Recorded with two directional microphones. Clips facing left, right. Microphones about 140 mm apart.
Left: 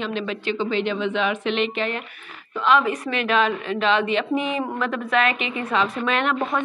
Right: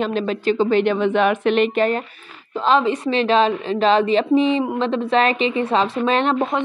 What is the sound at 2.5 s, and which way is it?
A woman's voice, 30° right (ahead or behind).